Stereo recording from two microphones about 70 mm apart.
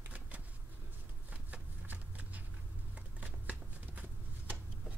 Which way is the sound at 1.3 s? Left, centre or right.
Right.